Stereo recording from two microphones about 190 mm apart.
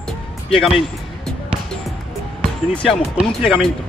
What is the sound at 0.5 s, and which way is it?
Music, centre (ahead or behind).